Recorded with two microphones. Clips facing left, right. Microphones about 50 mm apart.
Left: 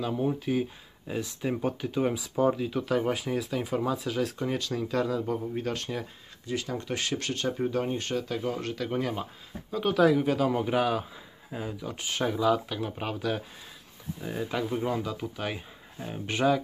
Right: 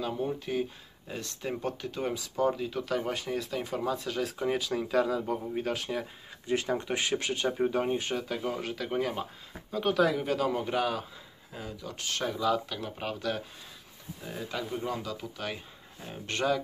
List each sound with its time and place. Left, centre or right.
0.0 s speech: centre
4.4 s speech: centre
6.4 s speech: right; by 16.6 s centre